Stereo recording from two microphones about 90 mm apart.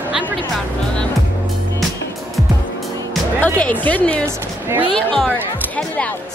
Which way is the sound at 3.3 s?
15° left (ahead or behind).